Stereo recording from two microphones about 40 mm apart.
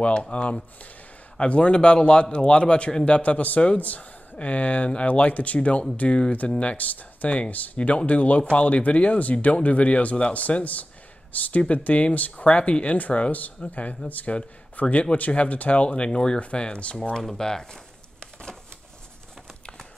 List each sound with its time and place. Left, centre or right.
0.0 s a man's voice: left
3.1 s a man's voice: left
6.6 s speech: left
17.1 s speech: centre
18.2 s a sound: centre